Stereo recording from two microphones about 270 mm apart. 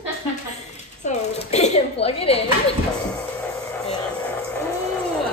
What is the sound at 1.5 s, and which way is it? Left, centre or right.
Speech, left.